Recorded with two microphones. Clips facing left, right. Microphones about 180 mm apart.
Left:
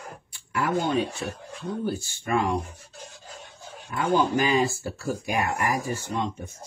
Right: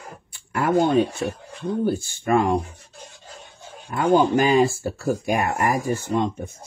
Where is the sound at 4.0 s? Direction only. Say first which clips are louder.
Right 5 dB; 50° right (ahead or behind).